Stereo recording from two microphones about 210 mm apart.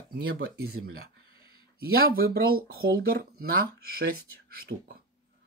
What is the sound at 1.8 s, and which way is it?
Speech, 45° right (ahead or behind).